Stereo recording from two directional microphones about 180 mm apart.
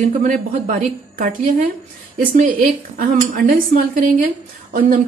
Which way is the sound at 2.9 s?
50° right (ahead or behind).